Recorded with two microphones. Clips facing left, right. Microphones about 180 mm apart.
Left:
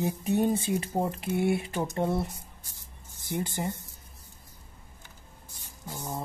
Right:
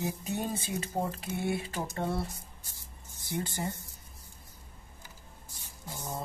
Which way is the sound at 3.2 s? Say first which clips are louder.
Left 3 dB; 15° left (ahead or behind).